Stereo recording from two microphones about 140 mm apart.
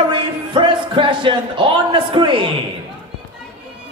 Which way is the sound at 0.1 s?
35° right (ahead or behind).